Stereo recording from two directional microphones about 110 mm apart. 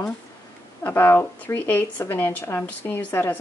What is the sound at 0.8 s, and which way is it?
Speech, 20° left (ahead or behind).